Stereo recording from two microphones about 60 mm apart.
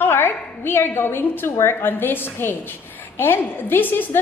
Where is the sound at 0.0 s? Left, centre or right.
Left.